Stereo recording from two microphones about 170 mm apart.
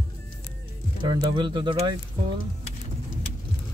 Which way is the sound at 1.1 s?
25° right (ahead or behind).